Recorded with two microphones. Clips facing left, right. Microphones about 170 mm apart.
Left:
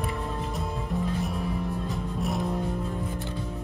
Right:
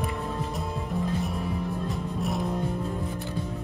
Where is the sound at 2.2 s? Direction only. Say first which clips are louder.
Even; centre (ahead or behind).